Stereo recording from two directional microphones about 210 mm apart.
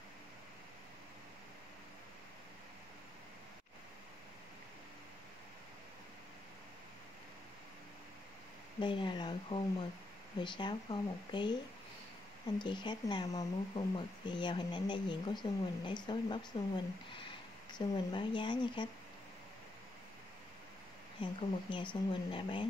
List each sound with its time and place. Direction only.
8.7 s speech: 20° left (ahead or behind)
12.5 s speech: 20° left (ahead or behind)
21.2 s speech: 25° left (ahead or behind)